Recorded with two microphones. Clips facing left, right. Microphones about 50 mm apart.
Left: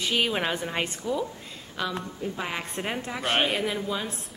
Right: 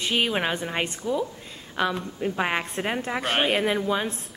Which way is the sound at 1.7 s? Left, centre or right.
Right.